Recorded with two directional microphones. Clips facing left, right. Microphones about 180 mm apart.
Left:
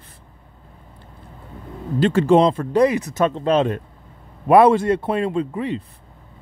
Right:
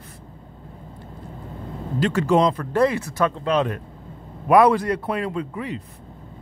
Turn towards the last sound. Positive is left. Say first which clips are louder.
# left 5 dB
turn(degrees=30)  # may be behind; listen again after turning